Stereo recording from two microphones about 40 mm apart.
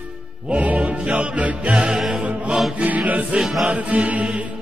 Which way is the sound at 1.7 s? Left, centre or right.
Right.